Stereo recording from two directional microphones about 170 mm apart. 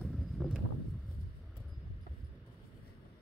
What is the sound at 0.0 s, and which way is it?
Vehicle, centre (ahead or behind).